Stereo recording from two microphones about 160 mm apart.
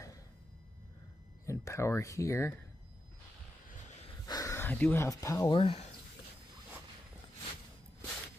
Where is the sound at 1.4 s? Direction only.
20° left (ahead or behind).